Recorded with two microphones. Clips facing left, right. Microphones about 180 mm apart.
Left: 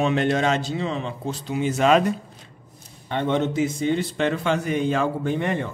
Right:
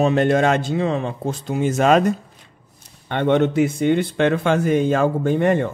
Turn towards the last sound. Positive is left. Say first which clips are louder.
# right 7 dB
turn(degrees=-50)  # may be behind; listen again after turning